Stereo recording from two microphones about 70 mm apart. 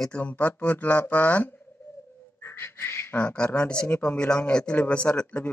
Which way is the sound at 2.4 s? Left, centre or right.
Left.